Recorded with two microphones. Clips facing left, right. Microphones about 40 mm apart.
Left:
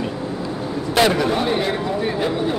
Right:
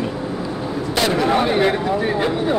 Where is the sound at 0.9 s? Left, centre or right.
Centre.